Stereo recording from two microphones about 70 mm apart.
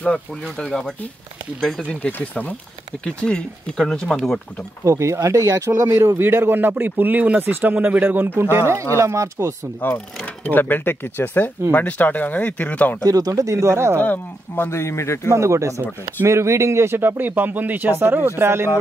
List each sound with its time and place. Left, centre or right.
0.0 s speech: centre
4.8 s speech: right
6.2 s speech: right
8.9 s speech: right
9.8 s speech: left
13.0 s speech: right
14.0 s speech: left
15.3 s speech: right